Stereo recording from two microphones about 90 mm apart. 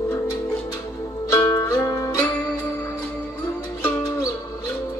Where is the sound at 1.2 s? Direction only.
35° left (ahead or behind).